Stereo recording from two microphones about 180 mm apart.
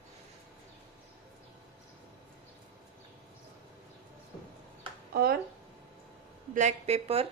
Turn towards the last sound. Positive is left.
turn(degrees=-35)  # may be behind; listen again after turning